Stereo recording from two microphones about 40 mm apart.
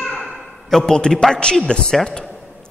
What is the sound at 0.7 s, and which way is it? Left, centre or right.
A woman's voice, centre.